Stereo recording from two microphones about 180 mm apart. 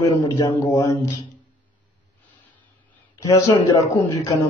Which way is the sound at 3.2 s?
15° left (ahead or behind).